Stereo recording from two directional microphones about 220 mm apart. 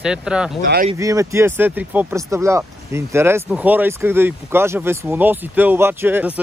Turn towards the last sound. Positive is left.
turn(degrees=-10)  # may be behind; listen again after turning